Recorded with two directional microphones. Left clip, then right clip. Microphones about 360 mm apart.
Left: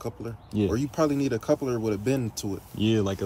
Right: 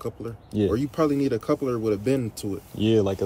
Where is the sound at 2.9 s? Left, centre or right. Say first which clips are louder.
Right 6 dB; centre.